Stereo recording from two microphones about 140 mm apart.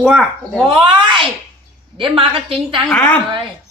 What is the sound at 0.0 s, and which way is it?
Speech, centre (ahead or behind).